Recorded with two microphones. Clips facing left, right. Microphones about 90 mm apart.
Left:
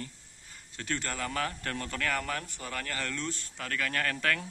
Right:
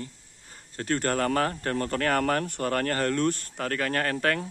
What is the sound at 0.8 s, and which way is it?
Speech, 45° right (ahead or behind).